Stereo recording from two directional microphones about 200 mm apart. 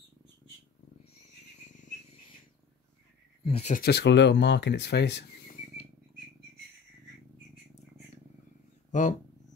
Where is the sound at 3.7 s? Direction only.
55° left (ahead or behind).